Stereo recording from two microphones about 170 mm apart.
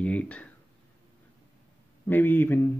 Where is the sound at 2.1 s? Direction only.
10° left (ahead or behind).